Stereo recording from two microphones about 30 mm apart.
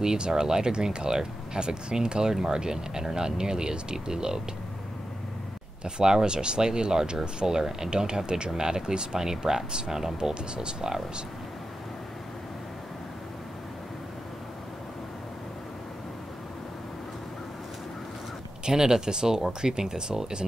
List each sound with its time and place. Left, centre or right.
0.0 s speech: right
5.9 s speech: right
18.7 s speech: right